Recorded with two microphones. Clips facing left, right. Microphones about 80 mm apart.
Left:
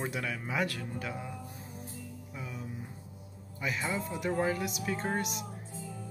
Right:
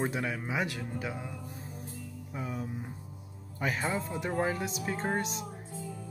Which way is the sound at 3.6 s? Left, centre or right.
Right.